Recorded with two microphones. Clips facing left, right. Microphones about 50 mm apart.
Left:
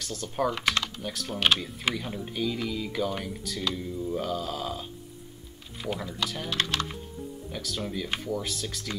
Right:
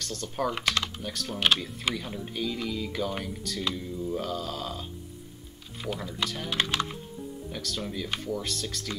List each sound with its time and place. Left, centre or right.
0.0 s speech: centre
5.9 s speech: centre
6.5 s speech: centre
7.5 s speech: centre